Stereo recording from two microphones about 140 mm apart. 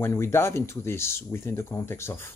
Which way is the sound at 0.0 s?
20° left (ahead or behind).